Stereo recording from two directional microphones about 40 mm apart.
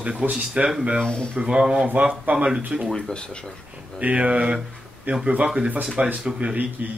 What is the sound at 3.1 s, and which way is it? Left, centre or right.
Speech, left.